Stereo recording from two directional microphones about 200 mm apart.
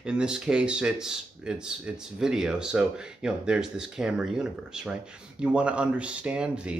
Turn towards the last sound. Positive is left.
turn(degrees=-5)  # may be behind; listen again after turning